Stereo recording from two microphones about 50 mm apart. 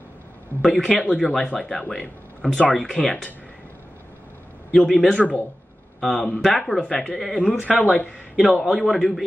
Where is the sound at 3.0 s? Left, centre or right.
Left.